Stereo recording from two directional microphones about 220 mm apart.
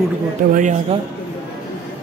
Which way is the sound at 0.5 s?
35° right (ahead or behind).